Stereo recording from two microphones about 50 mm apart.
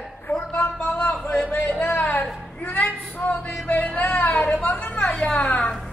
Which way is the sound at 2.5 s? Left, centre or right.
Left.